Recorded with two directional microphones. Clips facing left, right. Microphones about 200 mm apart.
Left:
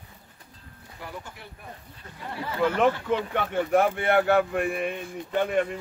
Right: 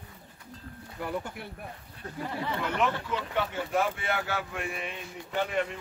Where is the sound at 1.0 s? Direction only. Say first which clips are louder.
Right 6 dB; 55° right (ahead or behind).